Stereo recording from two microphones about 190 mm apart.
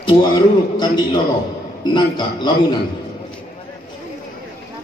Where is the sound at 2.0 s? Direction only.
25° left (ahead or behind).